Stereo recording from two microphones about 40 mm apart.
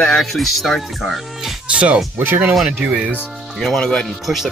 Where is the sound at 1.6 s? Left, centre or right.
Right.